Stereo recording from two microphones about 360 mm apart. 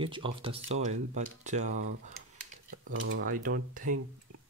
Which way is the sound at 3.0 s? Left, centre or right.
Right.